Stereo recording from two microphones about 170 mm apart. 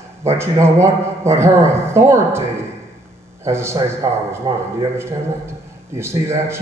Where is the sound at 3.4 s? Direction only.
15° right (ahead or behind).